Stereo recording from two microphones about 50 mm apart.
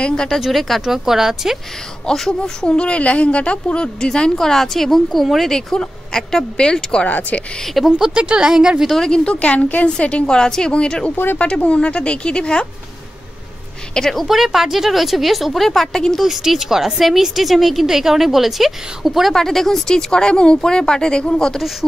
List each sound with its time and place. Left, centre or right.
0.0 s a woman's voice: centre
0.4 s a woman's voice: centre
2.0 s a woman's voice: centre
2.7 s a woman's voice: left
7.1 s speech: left
7.6 s a woman's voice: centre
8.1 s a woman's voice: centre
8.9 s a woman's voice: centre
9.3 s a woman's voice: left
13.9 s a woman's voice: centre
14.2 s a woman's voice: centre
16.2 s a woman's voice: centre
19.3 s a woman's voice: centre